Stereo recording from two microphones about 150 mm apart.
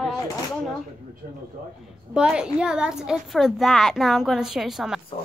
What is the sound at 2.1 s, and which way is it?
A child's voice, 5° right (ahead or behind).